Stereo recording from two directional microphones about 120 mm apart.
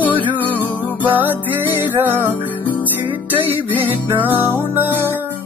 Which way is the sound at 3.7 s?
15° right (ahead or behind).